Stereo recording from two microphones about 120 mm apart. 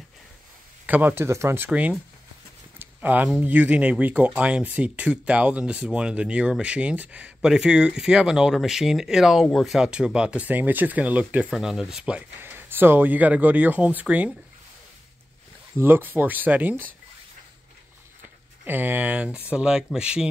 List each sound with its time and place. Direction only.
0.8 s speech: 15° right (ahead or behind)
1.7 s speech: 10° right (ahead or behind)
15.8 s speech: 15° right (ahead or behind)
18.6 s speech: 15° right (ahead or behind)